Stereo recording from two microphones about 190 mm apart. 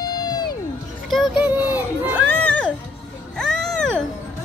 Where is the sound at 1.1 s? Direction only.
Centre (ahead or behind).